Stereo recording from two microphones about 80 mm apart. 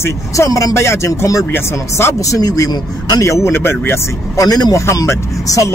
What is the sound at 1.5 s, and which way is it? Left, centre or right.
Speech, left.